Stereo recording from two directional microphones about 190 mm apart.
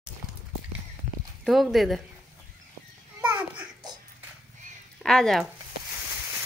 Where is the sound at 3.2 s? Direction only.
10° right (ahead or behind).